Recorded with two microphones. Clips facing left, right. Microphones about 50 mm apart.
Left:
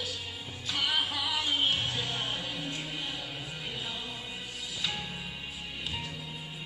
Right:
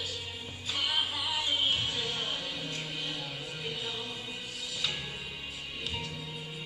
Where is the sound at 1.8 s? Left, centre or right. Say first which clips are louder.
Left 1 dB; left.